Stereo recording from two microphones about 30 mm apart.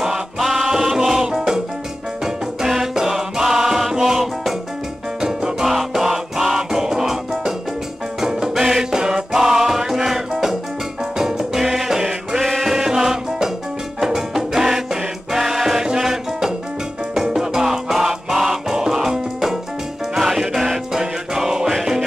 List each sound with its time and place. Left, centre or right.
0.4 s music: centre
2.7 s music: centre
5.2 s music: centre
12.0 s music: right
12.4 s music: centre
12.7 s music: centre